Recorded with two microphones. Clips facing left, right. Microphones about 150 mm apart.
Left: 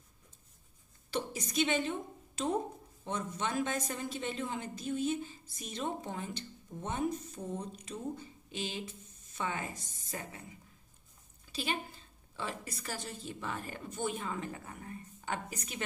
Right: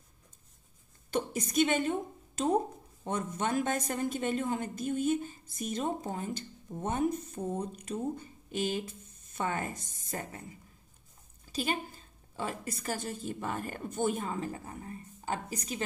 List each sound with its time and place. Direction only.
1.1 s a woman's voice: 50° right (ahead or behind)
11.5 s a woman's voice: 45° right (ahead or behind)